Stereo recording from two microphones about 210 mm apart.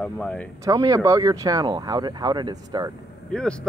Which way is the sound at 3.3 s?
5° left (ahead or behind).